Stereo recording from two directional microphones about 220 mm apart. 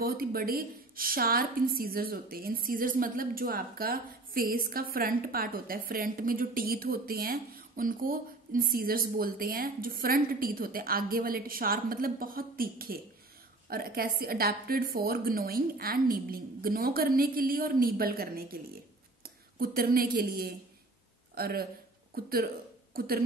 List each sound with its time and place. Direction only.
0.0 s a woman's voice: 40° right (ahead or behind)